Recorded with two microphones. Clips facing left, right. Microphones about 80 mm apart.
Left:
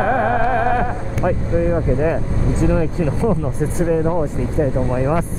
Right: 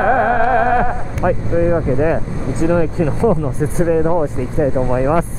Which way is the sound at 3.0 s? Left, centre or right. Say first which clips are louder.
Right 3 dB; right.